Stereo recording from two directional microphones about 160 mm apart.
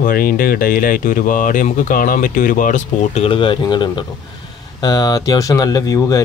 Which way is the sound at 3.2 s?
35° left (ahead or behind).